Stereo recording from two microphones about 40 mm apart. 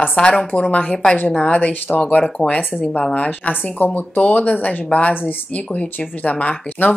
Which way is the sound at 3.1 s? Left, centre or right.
Left.